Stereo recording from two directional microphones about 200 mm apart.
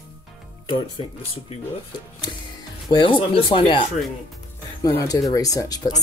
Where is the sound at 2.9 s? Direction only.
25° left (ahead or behind).